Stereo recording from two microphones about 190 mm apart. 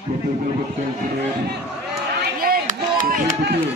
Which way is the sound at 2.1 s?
50° right (ahead or behind).